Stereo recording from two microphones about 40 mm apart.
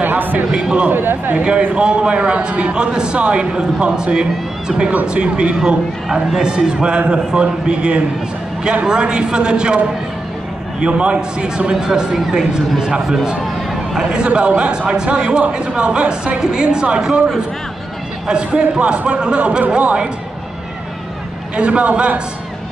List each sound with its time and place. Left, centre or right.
0.0 s a sound: right
0.5 s a man's voice: centre
0.8 s speech: right
1.3 s a man's voice: right
10.8 s a man's voice: right
18.2 s a man's voice: right
21.5 s a man's voice: right